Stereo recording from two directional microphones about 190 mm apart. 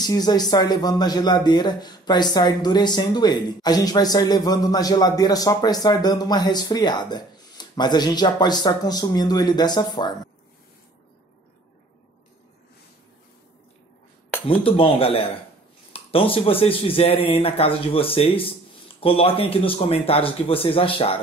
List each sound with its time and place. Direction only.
0.0 s speech: 20° left (ahead or behind)
14.5 s speech: 30° left (ahead or behind)